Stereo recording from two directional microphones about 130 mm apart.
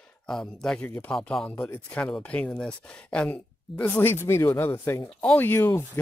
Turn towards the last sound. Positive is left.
turn(degrees=20)  # may be behind; listen again after turning